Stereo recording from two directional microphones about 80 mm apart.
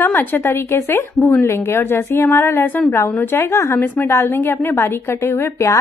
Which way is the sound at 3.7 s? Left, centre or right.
Left.